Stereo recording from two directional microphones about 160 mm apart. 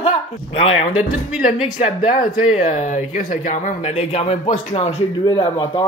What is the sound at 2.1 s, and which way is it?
Speech, 55° left (ahead or behind).